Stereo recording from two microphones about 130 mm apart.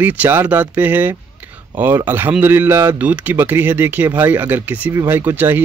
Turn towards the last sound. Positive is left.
turn(degrees=-15)  # may be behind; listen again after turning